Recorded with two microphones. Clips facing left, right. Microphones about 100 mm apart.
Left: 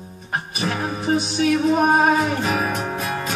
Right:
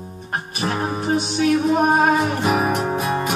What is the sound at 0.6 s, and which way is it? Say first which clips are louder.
Music: right 2 dB; 30° right (ahead or behind).